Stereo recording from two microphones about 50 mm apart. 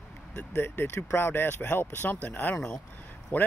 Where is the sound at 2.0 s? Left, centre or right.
Left.